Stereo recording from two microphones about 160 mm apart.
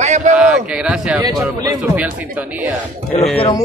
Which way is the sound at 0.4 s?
5° right (ahead or behind).